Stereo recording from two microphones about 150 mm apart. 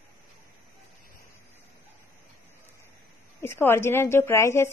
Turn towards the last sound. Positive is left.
turn(degrees=20)  # may be behind; listen again after turning